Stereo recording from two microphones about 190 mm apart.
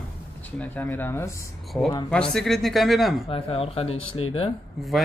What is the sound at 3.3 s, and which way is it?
Speech, 30° left (ahead or behind).